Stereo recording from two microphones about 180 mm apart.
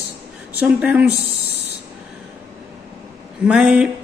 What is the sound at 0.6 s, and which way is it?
Speech, 10° right (ahead or behind).